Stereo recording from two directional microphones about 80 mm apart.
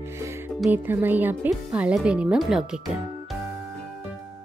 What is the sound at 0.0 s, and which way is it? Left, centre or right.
Music, right.